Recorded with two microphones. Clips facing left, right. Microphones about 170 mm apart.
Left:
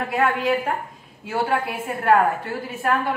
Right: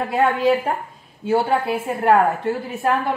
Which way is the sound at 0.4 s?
35° right (ahead or behind).